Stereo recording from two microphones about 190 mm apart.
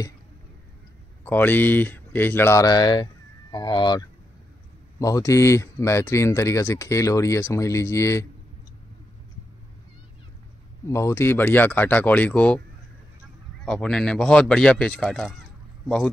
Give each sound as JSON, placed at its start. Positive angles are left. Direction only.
{"t": 1.2, "sound": "speech", "side_deg": 10}
{"t": 10.9, "sound": "speech", "side_deg": 15}
{"t": 13.7, "sound": "speech", "side_deg": 5}